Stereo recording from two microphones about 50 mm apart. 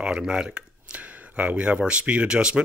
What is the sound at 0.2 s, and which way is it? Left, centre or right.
Speech, centre.